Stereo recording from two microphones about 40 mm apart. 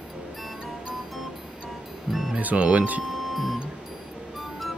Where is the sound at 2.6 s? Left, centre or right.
Right.